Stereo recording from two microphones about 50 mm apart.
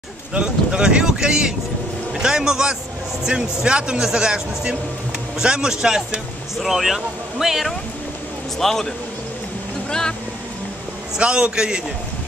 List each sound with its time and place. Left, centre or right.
0.3 s speech: centre
8.5 s speech: centre
11.1 s a man's voice: right